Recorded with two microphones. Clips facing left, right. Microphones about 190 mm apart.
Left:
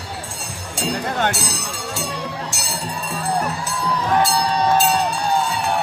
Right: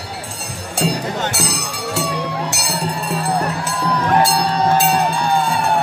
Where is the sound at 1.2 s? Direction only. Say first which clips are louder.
Right 1 dB; 65° right (ahead or behind).